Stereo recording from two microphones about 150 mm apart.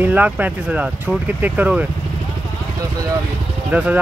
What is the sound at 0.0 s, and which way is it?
Speech, 10° right (ahead or behind).